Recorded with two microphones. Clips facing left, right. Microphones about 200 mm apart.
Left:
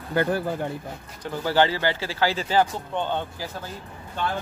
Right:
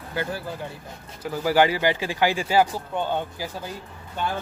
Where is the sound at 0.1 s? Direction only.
55° left (ahead or behind).